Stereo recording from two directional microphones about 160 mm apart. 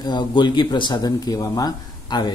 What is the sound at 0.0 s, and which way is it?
A man's voice, 30° left (ahead or behind).